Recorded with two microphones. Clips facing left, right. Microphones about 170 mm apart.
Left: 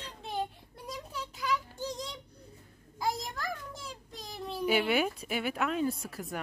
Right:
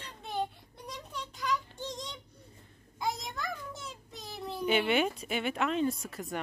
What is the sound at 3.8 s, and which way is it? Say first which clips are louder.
A child's voice: even; 5° right (ahead or behind).